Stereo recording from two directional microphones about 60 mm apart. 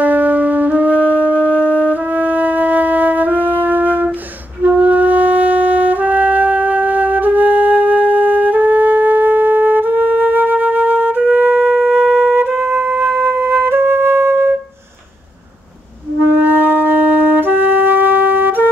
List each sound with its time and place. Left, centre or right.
0.0 s music: right
12.0 s music: centre
12.4 s flute: right
16.3 s wind instrument: right